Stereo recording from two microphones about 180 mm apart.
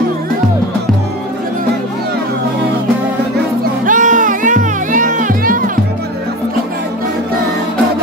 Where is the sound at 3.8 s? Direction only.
45° right (ahead or behind).